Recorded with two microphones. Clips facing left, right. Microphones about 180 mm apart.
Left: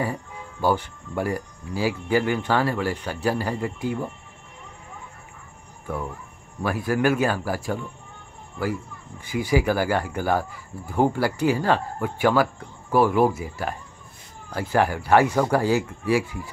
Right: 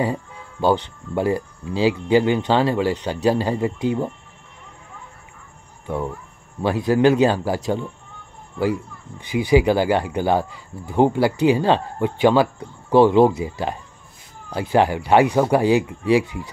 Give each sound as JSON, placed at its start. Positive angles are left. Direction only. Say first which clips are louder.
{"t": 0.0, "sound": "speech", "louder": "right 5 dB", "side_deg": -20}
{"t": 6.6, "sound": "speech", "louder": "right 6 dB", "side_deg": -20}
{"t": 9.2, "sound": "speech", "louder": "right 6 dB", "side_deg": -20}